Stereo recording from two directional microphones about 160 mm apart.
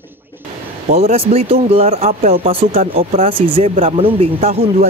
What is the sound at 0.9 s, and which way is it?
Speech, 40° right (ahead or behind).